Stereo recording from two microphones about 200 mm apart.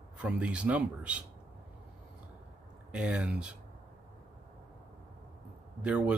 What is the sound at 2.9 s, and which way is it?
Speech, 5° right (ahead or behind).